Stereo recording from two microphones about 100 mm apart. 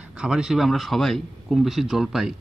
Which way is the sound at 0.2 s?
5° right (ahead or behind).